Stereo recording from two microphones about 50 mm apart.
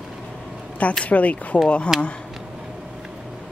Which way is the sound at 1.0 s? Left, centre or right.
Left.